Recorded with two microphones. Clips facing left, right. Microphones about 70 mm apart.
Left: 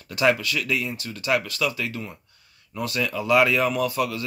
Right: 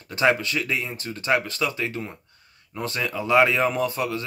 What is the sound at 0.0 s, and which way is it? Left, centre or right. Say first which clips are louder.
A man's voice: even; right.